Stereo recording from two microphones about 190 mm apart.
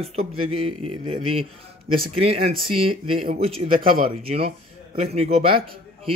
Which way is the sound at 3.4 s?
45° right (ahead or behind).